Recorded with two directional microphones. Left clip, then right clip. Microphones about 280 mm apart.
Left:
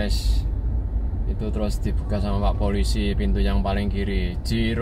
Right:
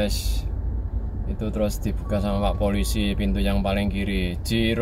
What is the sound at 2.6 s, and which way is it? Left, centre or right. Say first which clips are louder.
Speech: right 1 dB; centre.